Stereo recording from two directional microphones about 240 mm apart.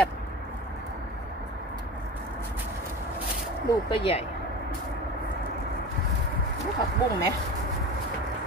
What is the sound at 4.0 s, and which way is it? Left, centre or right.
Speech, left.